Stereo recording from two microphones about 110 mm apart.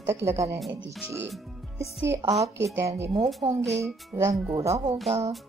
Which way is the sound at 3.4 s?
55° right (ahead or behind).